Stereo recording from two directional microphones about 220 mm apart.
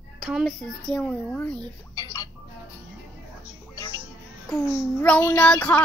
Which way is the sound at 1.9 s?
15° left (ahead or behind).